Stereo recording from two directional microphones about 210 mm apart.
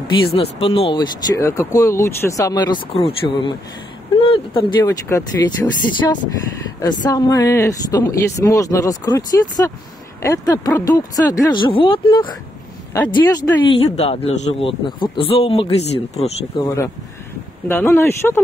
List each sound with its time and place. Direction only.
0.3 s speech: 30° left (ahead or behind)
4.8 s speech: 10° left (ahead or behind)
13.8 s speech: 30° left (ahead or behind)
16.5 s speech: 15° left (ahead or behind)